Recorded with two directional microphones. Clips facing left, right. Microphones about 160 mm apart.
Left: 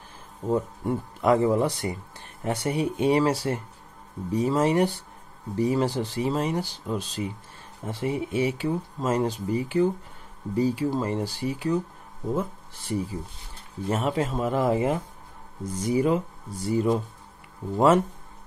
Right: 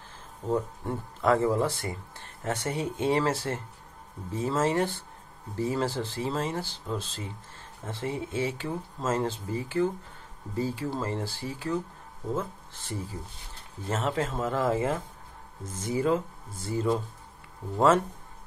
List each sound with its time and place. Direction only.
0.5 s speech: 15° left (ahead or behind)